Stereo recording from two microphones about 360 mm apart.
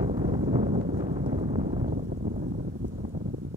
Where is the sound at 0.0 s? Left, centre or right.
Centre.